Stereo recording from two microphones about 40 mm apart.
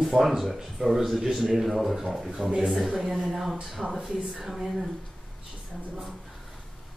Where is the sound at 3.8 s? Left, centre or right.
Centre.